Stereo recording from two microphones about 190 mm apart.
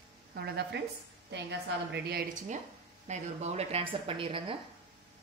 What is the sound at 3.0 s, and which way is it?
A woman's voice, 35° right (ahead or behind).